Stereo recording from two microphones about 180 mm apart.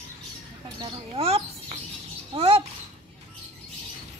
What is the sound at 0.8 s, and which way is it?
Bird, 30° right (ahead or behind).